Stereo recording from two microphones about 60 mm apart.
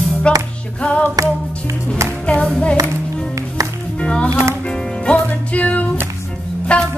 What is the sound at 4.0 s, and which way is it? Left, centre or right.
Music, centre.